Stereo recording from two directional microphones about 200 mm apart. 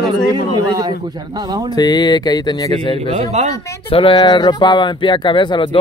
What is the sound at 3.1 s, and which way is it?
Speech, 35° right (ahead or behind).